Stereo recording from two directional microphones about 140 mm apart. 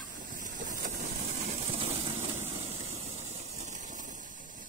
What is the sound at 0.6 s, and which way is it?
Vehicle, 65° right (ahead or behind).